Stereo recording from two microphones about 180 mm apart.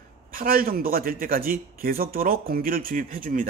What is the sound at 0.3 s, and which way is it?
Speech, 55° right (ahead or behind).